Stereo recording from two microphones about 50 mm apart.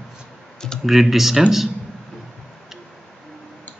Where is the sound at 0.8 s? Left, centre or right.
Centre.